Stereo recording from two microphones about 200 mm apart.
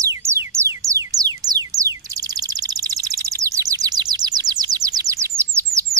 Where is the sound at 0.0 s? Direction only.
15° right (ahead or behind).